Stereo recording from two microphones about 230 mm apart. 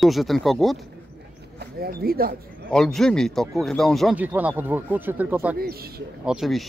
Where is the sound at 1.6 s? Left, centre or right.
Right.